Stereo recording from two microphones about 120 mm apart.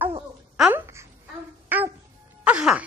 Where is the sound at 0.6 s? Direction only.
10° right (ahead or behind).